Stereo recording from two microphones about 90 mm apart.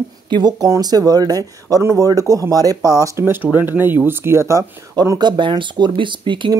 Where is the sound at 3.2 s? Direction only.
20° right (ahead or behind).